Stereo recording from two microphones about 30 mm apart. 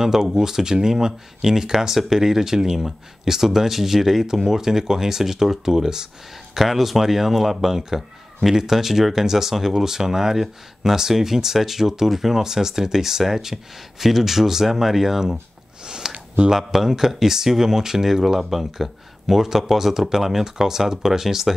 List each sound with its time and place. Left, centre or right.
0.0 s speech: centre
16.0 s a sound: centre
16.4 s speech: centre